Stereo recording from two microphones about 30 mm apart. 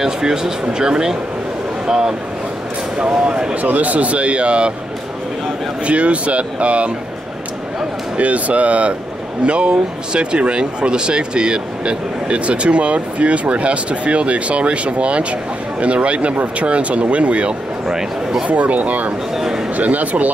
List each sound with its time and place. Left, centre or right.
0.0 s speech: right
3.6 s speech: right
5.9 s speech: right
8.2 s speech: right
9.4 s speech: right
17.8 s speech: centre
18.5 s speech: right
19.3 s a sound: centre
19.7 s speech: right